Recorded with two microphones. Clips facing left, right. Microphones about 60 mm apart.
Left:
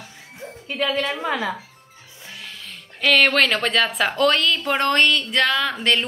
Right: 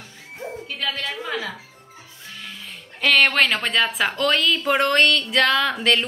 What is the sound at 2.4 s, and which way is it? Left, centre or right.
A woman's voice, centre.